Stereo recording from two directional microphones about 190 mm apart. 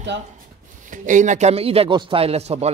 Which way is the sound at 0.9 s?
40° right (ahead or behind).